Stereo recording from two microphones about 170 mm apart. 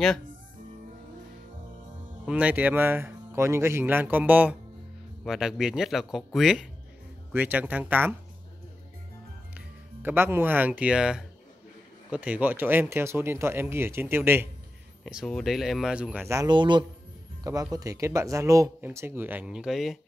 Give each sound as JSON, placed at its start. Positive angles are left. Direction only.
{"t": 2.2, "sound": "speech", "side_deg": -10}
{"t": 10.0, "sound": "speech", "side_deg": -15}
{"t": 15.0, "sound": "speech", "side_deg": 0}